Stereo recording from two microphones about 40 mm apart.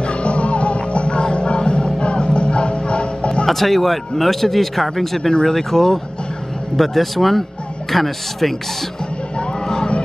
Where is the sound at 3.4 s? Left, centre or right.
Centre.